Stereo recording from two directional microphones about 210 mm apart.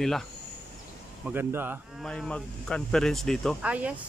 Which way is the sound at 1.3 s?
10° right (ahead or behind).